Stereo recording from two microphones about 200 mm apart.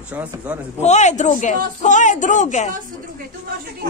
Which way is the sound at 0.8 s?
35° left (ahead or behind).